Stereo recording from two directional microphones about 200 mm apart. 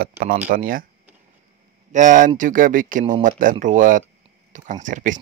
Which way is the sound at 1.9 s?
40° right (ahead or behind).